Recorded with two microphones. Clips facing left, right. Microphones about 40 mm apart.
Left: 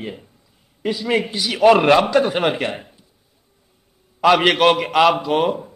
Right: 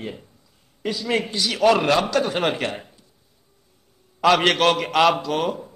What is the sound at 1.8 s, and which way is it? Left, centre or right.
Speech, left.